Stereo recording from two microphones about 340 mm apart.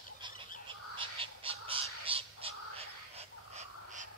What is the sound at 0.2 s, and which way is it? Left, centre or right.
Fowl, centre.